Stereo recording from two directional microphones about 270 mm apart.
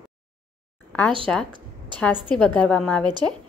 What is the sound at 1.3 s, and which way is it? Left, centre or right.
A woman's voice, centre.